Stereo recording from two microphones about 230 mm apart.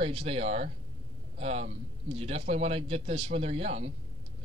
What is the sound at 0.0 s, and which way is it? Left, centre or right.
Speech, right.